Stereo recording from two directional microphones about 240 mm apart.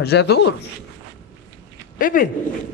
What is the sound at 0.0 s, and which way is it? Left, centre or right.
Speech, left.